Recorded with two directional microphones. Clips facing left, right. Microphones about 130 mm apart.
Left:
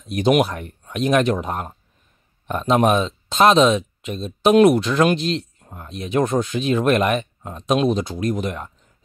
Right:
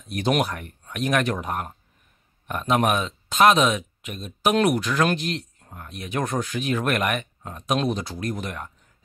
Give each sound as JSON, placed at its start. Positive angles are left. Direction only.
{"t": 0.1, "sound": "speech", "side_deg": 20}